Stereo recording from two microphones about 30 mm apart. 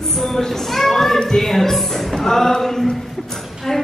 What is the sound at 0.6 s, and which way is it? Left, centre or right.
Children playing, centre.